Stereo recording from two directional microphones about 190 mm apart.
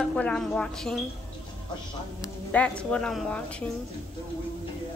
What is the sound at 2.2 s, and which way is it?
Music, 5° left (ahead or behind).